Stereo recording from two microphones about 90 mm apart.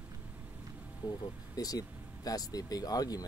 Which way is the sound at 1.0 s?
45° left (ahead or behind).